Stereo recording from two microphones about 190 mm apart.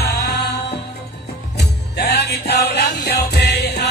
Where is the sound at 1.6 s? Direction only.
60° left (ahead or behind).